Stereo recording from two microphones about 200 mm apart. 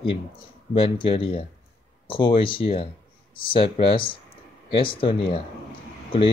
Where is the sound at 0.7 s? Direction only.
25° left (ahead or behind).